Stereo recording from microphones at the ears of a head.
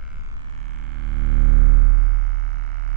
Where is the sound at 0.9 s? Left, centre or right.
Right.